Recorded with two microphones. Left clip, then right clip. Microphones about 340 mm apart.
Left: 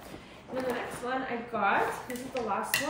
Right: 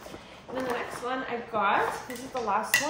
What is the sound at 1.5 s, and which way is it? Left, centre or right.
Speech, centre.